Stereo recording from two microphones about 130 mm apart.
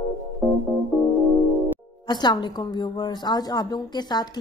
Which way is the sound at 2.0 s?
35° left (ahead or behind).